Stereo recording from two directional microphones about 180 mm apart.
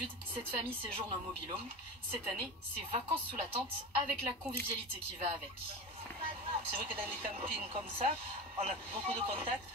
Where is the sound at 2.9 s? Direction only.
35° right (ahead or behind).